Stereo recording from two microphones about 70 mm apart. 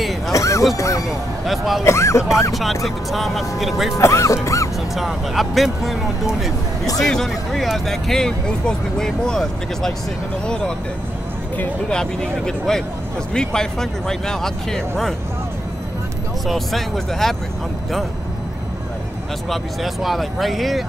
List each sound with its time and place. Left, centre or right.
0.3 s music: left
0.7 s speech: left
1.5 s speech: centre
1.9 s speech: left
2.5 s speech: centre
4.0 s speech: left
4.9 s speech: centre
11.9 s speech: centre
16.4 s speech: centre
19.5 s speech: centre